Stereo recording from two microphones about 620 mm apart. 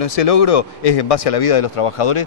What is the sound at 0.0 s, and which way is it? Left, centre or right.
Speech, left.